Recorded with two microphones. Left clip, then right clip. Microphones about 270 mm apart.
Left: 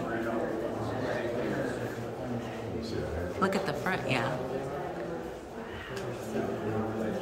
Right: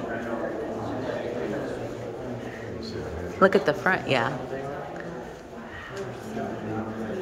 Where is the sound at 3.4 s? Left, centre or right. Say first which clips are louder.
Right 11 dB; centre.